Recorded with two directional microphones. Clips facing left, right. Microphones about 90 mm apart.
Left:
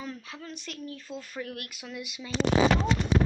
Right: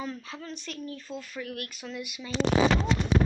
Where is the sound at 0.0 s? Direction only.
Centre (ahead or behind).